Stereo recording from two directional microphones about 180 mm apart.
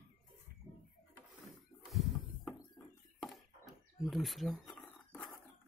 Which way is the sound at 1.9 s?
Centre (ahead or behind).